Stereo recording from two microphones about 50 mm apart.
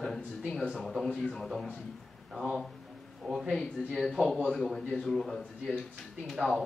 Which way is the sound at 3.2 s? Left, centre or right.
Centre.